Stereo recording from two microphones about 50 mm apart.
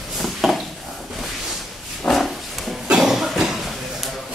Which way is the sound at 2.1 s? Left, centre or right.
Centre.